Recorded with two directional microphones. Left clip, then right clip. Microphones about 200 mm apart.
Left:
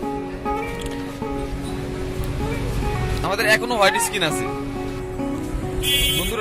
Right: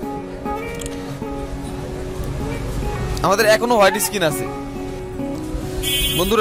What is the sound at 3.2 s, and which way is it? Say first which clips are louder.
Speech: right 5 dB; 45° right (ahead or behind).